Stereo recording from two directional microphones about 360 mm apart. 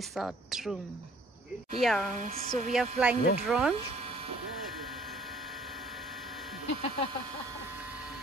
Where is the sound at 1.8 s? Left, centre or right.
Centre.